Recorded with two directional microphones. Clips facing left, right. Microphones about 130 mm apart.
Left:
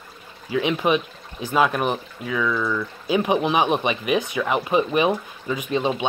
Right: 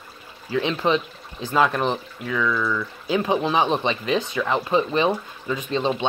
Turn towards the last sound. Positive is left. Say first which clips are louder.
# left 1 dB
turn(degrees=15)  # may be behind; listen again after turning